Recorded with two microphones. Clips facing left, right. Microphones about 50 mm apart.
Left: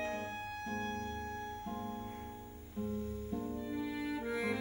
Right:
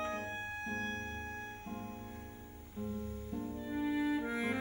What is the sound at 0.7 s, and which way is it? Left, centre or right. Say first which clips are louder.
Music: left 1 dB; right.